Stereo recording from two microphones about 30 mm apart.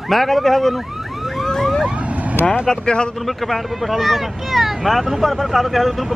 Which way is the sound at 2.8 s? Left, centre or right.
Left.